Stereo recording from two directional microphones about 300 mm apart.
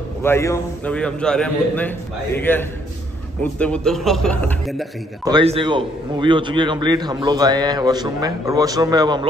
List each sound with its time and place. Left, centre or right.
0.2 s a man's voice: centre
5.2 s a man's voice: centre